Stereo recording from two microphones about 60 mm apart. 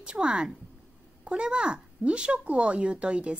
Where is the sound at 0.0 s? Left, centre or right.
Centre.